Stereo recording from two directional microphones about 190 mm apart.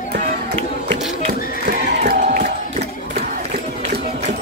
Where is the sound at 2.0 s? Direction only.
50° right (ahead or behind).